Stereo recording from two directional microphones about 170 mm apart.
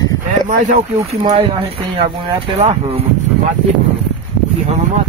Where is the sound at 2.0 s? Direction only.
35° right (ahead or behind).